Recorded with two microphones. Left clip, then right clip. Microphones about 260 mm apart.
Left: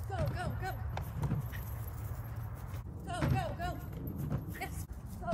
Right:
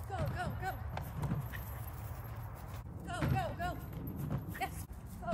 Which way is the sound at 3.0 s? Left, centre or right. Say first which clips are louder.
Left 1 dB; centre.